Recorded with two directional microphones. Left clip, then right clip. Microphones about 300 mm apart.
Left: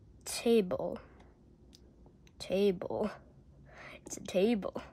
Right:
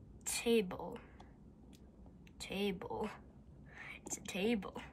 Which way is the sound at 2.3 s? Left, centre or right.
Left.